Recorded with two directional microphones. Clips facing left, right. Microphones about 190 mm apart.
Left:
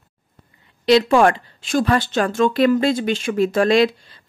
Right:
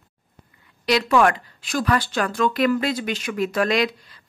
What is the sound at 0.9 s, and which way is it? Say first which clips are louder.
Speech: left 4 dB; 25° left (ahead or behind).